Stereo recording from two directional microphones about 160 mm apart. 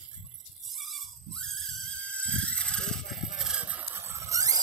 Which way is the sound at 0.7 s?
Centre (ahead or behind).